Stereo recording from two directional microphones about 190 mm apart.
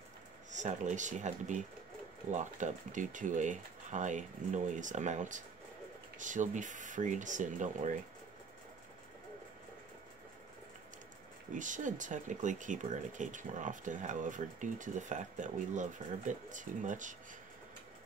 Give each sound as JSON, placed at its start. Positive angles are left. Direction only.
{"t": 0.5, "sound": "speech", "side_deg": -40}
{"t": 11.5, "sound": "speech", "side_deg": -40}